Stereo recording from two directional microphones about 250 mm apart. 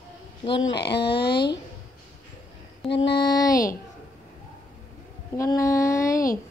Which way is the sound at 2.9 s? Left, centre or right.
Left.